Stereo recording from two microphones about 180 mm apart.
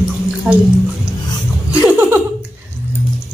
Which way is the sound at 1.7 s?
10° right (ahead or behind).